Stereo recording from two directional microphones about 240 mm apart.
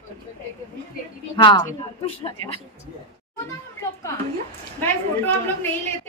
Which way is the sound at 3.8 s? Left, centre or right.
Centre.